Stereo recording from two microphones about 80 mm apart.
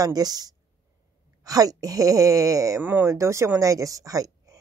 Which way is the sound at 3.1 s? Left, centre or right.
Right.